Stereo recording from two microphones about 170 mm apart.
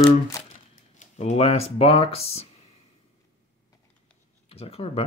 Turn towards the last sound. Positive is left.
turn(degrees=35)  # may be behind; listen again after turning